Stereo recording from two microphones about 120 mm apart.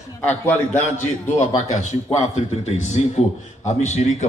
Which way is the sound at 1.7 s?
85° left.